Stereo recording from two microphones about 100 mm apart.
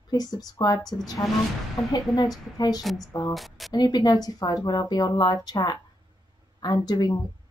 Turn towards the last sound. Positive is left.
turn(degrees=45)  # may be behind; listen again after turning